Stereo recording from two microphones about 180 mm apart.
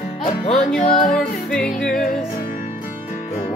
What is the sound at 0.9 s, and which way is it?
Music, 50° left (ahead or behind).